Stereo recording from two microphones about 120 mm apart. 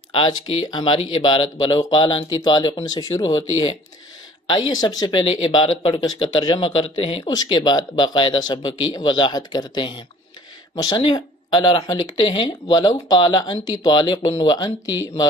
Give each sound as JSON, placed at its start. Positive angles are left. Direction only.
{"t": 0.1, "sound": "speech", "side_deg": 40}
{"t": 4.5, "sound": "speech", "side_deg": 35}
{"t": 6.2, "sound": "speech", "side_deg": 40}
{"t": 7.2, "sound": "speech", "side_deg": 35}